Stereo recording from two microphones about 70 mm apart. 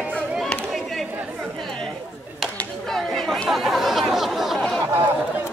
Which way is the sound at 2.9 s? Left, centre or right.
Centre.